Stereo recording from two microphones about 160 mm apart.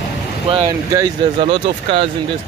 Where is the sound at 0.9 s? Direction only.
30° right (ahead or behind).